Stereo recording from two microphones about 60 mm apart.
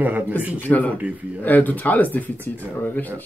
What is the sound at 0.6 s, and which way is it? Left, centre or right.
Speech, left.